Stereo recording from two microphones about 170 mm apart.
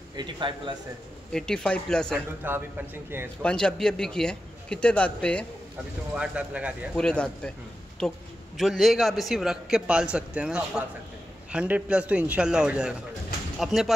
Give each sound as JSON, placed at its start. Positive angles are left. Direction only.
{"t": 0.1, "sound": "a man's voice", "side_deg": -25}
{"t": 1.3, "sound": "a man's voice", "side_deg": 5}
{"t": 2.4, "sound": "a man's voice", "side_deg": -15}
{"t": 3.4, "sound": "a man's voice", "side_deg": 5}
{"t": 6.1, "sound": "a man's voice", "side_deg": -5}
{"t": 7.0, "sound": "a man's voice", "side_deg": 5}